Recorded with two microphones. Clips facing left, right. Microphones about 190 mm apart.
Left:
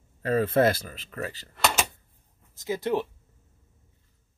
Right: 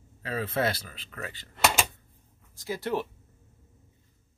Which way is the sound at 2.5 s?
20° left (ahead or behind).